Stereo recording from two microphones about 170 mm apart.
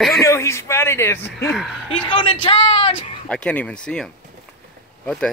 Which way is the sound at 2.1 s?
30° left (ahead or behind).